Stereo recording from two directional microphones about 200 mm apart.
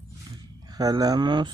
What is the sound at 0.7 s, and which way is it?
Speech, 20° right (ahead or behind).